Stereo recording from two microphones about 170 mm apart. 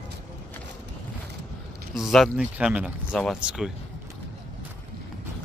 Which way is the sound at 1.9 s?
Centre (ahead or behind).